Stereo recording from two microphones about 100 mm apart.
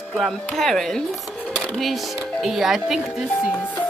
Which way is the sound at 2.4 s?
5° right (ahead or behind).